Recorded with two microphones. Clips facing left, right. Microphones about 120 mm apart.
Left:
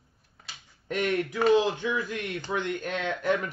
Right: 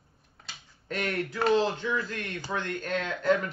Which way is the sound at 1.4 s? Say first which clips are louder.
Left 2 dB; 15° left (ahead or behind).